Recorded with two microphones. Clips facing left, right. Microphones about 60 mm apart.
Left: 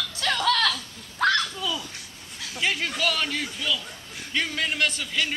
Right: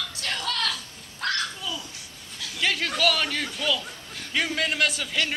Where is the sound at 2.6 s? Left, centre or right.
Centre.